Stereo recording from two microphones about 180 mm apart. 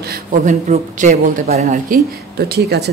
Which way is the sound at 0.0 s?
60° right (ahead or behind).